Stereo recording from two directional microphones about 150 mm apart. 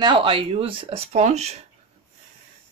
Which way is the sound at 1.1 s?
50° right (ahead or behind).